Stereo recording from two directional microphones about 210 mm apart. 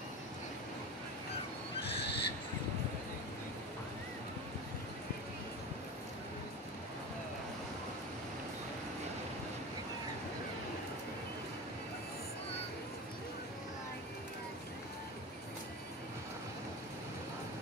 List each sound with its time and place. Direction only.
1.9 s neigh: 50° left (ahead or behind)